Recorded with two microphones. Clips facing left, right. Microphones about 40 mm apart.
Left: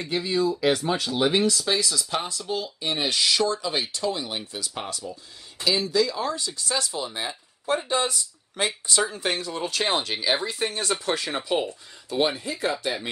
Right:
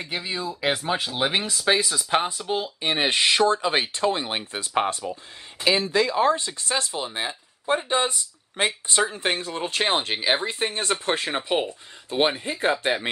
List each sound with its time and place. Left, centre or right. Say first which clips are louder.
0.0 s speech: left 5 dB; centre; by 13.1 s right